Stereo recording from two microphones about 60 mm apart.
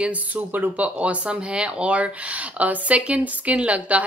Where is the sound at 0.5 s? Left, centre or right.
Right.